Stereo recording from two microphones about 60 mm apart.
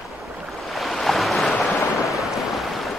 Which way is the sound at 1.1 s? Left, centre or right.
Centre.